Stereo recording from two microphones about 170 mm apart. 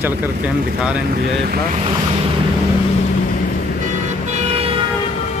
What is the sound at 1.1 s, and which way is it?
Speech, 65° right (ahead or behind).